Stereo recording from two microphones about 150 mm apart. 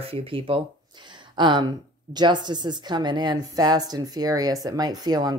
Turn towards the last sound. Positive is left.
turn(degrees=-25)  # may be behind; listen again after turning